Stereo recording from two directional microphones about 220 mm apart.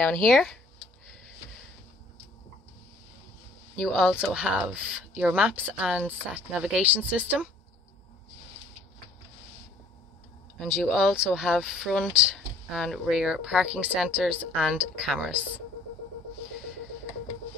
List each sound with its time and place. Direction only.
0.0 s speech: centre (ahead or behind)
3.7 s speech: centre (ahead or behind)
10.6 s speech: centre (ahead or behind)